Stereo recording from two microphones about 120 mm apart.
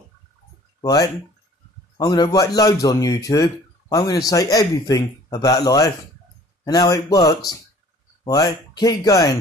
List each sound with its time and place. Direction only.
0.7 s speech: 35° left (ahead or behind)